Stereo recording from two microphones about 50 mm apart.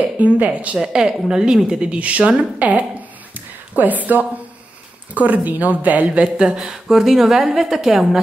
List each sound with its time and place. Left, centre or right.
0.2 s speech: right
0.7 s a woman's voice: centre
3.3 s a sound: right
5.1 s speech: right
6.2 s speech: centre
6.6 s a woman's voice: centre